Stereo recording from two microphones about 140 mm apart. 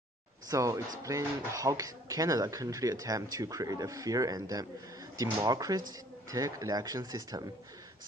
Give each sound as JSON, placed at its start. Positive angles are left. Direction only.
{"t": 0.5, "sound": "speech", "side_deg": -20}